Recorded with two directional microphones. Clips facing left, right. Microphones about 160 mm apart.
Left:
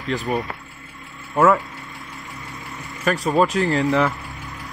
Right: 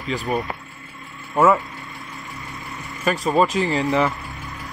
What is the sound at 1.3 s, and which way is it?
Speech, 5° right (ahead or behind).